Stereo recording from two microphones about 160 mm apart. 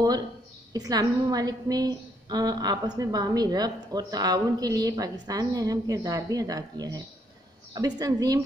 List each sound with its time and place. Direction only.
0.7 s a woman's voice: 25° right (ahead or behind)